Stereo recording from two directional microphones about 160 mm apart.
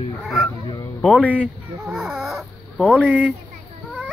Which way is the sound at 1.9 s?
Centre (ahead or behind).